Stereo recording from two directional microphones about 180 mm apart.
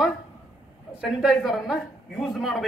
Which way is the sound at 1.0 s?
Centre (ahead or behind).